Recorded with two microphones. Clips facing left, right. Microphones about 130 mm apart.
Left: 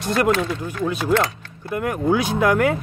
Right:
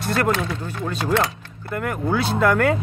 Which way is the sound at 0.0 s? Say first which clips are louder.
Left 2 dB; 20° left (ahead or behind).